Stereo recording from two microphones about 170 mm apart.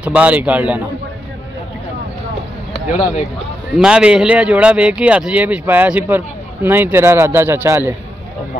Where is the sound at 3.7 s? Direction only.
5° right (ahead or behind).